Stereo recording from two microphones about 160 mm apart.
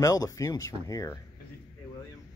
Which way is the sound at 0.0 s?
20° left (ahead or behind).